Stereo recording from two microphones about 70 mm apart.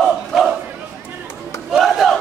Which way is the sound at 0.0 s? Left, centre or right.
Centre.